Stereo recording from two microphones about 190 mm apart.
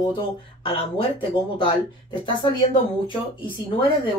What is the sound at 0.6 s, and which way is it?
A woman's voice, 30° left (ahead or behind).